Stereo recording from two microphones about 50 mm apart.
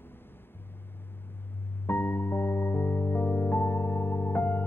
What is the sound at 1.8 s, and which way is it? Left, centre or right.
Music, left.